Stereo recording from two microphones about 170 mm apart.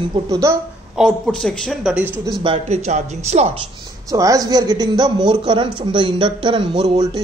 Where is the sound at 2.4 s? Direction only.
35° right (ahead or behind).